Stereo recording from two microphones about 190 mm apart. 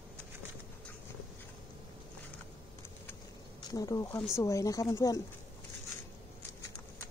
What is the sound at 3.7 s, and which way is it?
Speech, 20° left (ahead or behind).